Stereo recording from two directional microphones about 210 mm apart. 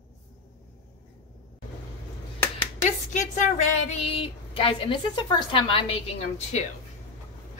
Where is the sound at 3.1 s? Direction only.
35° left (ahead or behind).